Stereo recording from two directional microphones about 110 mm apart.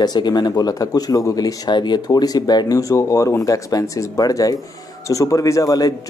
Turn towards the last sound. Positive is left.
turn(degrees=35)  # may be behind; listen again after turning